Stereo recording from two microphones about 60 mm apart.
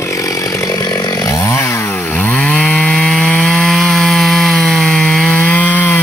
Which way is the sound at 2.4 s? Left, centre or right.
Centre.